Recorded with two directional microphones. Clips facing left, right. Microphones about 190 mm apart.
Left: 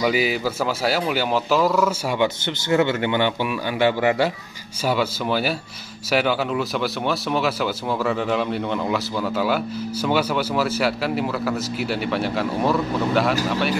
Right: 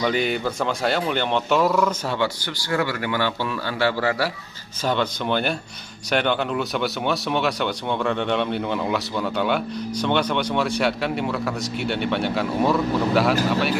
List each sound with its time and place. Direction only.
0.0 s speech: 5° left (ahead or behind)
2.1 s a man's voice: 20° left (ahead or behind)
4.8 s speech: 5° left (ahead or behind)